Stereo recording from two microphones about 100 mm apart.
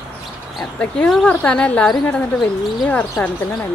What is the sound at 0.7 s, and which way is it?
A woman's voice, 5° left (ahead or behind).